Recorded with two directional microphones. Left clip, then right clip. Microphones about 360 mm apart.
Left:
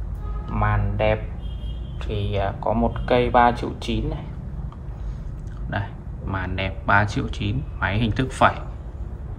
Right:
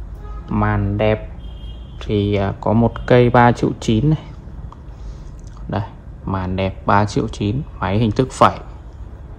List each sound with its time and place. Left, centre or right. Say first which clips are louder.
0.5 s speech: right 5 dB; right
5.7 s speech: right 4 dB; centre